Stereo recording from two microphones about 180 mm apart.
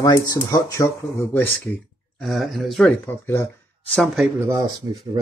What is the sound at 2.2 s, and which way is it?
Speech, centre (ahead or behind).